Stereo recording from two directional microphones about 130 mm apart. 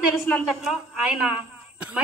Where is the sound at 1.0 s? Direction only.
10° right (ahead or behind).